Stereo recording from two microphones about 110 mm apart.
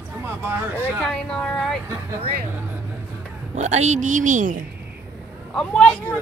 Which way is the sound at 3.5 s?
90° right.